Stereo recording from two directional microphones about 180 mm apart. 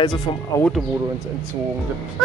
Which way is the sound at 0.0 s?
20° left (ahead or behind).